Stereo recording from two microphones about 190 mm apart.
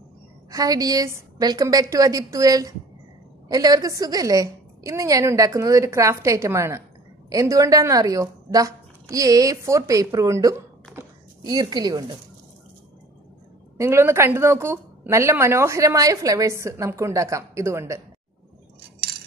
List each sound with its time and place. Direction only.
0.5 s a woman's voice: 20° right (ahead or behind)
11.0 s a sound: 20° right (ahead or behind)
13.7 s a woman's voice: 15° right (ahead or behind)